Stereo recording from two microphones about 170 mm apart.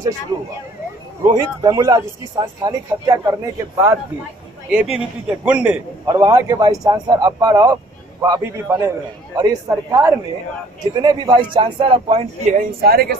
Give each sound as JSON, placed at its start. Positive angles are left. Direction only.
{"t": 1.2, "sound": "speech", "side_deg": -20}
{"t": 4.6, "sound": "a man's voice", "side_deg": -5}
{"t": 12.5, "sound": "a man's voice", "side_deg": -65}